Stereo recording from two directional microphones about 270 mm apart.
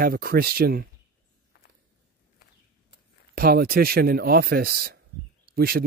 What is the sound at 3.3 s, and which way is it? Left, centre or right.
Speech, right.